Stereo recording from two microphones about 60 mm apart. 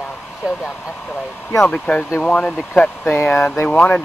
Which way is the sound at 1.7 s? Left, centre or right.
Centre.